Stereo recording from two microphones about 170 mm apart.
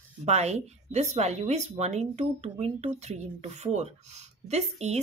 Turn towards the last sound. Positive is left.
turn(degrees=-40)  # may be behind; listen again after turning